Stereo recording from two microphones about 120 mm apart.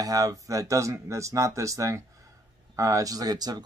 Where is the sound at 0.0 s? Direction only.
30° right (ahead or behind).